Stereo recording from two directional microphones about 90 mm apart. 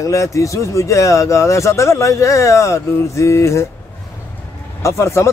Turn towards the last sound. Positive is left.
turn(degrees=30)  # may be behind; listen again after turning